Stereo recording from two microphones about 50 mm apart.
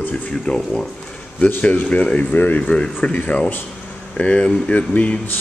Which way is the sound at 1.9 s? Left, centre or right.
Left.